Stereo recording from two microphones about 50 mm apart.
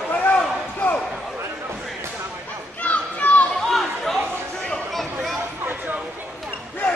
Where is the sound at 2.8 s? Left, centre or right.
Left.